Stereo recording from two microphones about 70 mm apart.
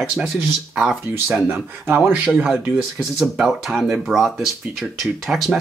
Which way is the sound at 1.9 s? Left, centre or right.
Right.